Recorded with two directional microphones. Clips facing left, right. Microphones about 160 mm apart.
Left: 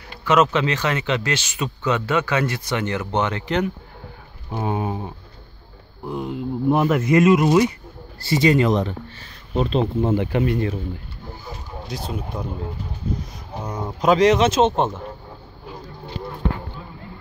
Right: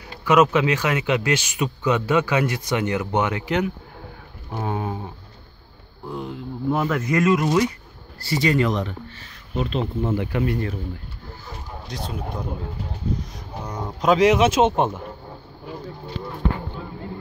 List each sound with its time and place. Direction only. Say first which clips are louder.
0.2 s speech: right 1 dB; 10° right (ahead or behind)
4.6 s speech: left 2 dB; 15° left (ahead or behind)
6.0 s speech: left 4 dB; 15° left (ahead or behind)
11.9 s speech: left 1 dB; 5° left (ahead or behind)
13.7 s speech: left 1 dB; 5° left (ahead or behind)